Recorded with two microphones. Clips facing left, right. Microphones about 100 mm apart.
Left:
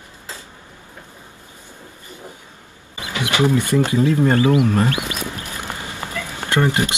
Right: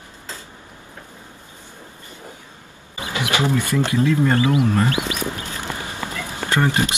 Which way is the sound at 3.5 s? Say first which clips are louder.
Left 3 dB; 20° left (ahead or behind).